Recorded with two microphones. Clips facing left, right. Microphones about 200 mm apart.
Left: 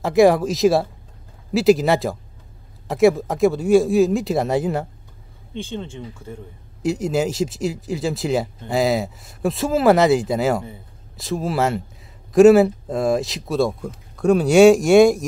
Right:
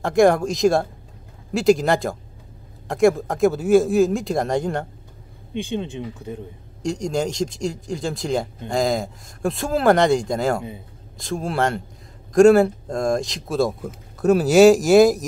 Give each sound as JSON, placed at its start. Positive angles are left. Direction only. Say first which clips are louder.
{"t": 0.0, "sound": "speech", "louder": "left 2 dB", "side_deg": 5}
{"t": 5.5, "sound": "speech", "louder": "right 3 dB", "side_deg": -15}
{"t": 6.8, "sound": "speech", "louder": "left 3 dB", "side_deg": 5}